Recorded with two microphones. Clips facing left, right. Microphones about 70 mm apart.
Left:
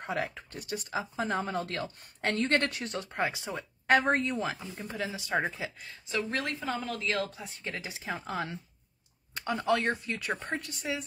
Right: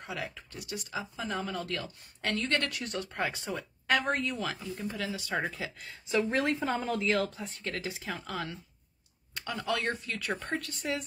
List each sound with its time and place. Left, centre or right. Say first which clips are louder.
0.0 s speech: left 5 dB; left
5.8 s speech: even; centre
6.1 s a woman's voice: right 4 dB; centre
7.1 s speech: right 3 dB; centre
8.0 s speech: left 2 dB; left